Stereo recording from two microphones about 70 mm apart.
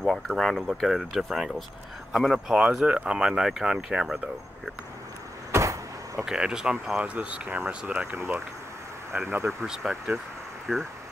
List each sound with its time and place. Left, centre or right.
0.0 s speech: centre
5.5 s vehicle: right
6.2 s speech: centre
7.0 s speech: centre
8.1 s speech: right
9.7 s speech: centre
10.7 s speech: centre